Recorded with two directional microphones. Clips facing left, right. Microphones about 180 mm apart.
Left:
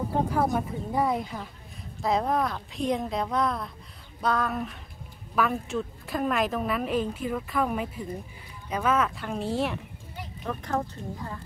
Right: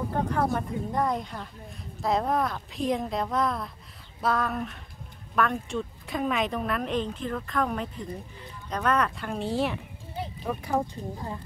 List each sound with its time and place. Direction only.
0.3 s a woman's voice: 5° left (ahead or behind)